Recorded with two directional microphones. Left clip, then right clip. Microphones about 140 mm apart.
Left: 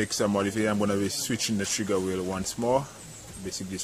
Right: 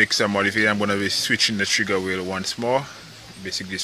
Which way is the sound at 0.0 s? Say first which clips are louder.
Right 8 dB; centre (ahead or behind).